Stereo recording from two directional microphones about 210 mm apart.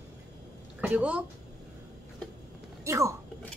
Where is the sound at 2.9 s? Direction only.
15° right (ahead or behind).